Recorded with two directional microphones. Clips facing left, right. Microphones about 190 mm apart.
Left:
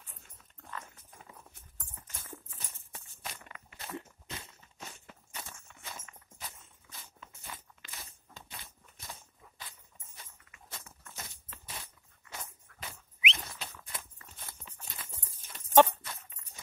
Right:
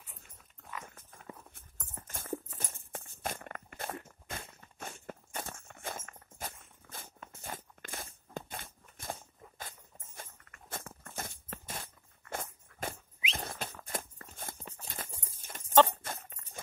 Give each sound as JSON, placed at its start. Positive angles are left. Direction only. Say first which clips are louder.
{"t": 0.1, "sound": "dog", "louder": "right 1 dB", "side_deg": -5}
{"t": 0.9, "sound": "clip-clop", "louder": "right 4 dB", "side_deg": -50}
{"t": 2.3, "sound": "a sound", "louder": "right 13 dB", "side_deg": -45}
{"t": 14.8, "sound": "clip-clop", "louder": "right 4 dB", "side_deg": -45}
{"t": 15.3, "sound": "dog", "louder": "left 2 dB", "side_deg": -50}